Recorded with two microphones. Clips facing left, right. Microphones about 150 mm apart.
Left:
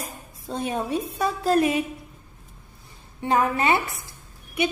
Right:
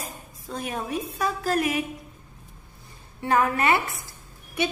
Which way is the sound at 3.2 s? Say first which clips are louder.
Even; 20° left (ahead or behind).